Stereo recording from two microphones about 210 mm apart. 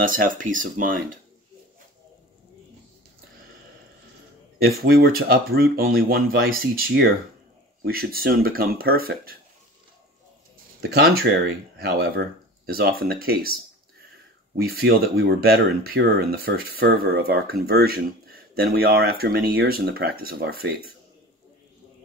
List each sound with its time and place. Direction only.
0.0 s speech: 40° right (ahead or behind)
4.6 s speech: 45° right (ahead or behind)
10.8 s speech: 45° right (ahead or behind)
14.6 s speech: 50° right (ahead or behind)